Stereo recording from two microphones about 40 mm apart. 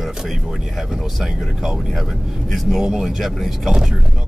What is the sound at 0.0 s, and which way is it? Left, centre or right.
Speech, centre.